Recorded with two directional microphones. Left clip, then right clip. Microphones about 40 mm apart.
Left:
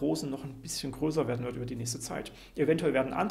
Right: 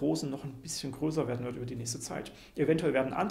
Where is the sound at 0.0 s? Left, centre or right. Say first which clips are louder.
Even; left.